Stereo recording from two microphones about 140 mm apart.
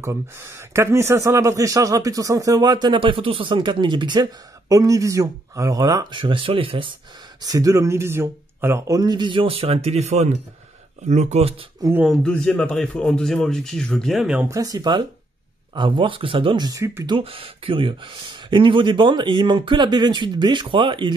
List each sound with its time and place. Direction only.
0.0 s speech: 20° right (ahead or behind)
6.2 s speech: 40° right (ahead or behind)
7.4 s speech: 25° right (ahead or behind); by 11.5 s 50° right (ahead or behind)
12.1 s speech: 5° left (ahead or behind)
14.5 s speech: 25° right (ahead or behind)
17.1 s speech: 40° right (ahead or behind)